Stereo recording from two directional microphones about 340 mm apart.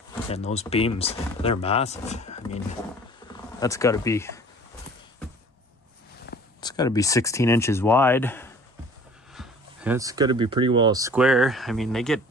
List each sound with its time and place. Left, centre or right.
0.3 s speech: centre
6.6 s speech: centre